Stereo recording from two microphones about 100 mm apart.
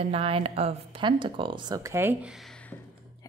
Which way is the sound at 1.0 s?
55° right (ahead or behind).